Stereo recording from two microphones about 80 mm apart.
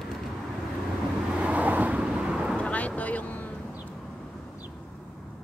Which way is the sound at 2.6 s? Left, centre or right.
Centre.